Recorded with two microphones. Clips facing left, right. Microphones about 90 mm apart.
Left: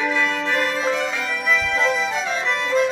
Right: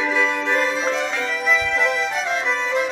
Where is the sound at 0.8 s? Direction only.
5° left (ahead or behind).